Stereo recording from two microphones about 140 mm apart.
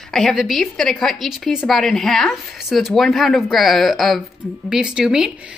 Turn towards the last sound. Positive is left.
turn(degrees=-5)  # may be behind; listen again after turning